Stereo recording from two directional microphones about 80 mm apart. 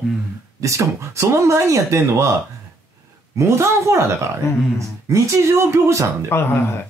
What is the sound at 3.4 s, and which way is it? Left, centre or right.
Speech, right.